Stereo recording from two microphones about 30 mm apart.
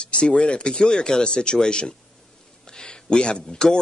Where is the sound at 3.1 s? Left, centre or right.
Left.